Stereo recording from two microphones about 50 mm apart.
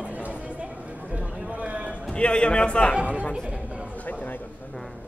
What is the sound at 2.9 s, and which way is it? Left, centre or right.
Speech, right.